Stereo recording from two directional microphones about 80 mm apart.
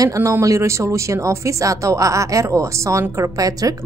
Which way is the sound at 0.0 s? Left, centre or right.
Right.